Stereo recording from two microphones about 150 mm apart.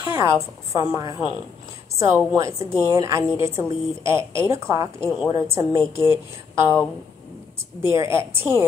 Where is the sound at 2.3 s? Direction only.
20° right (ahead or behind).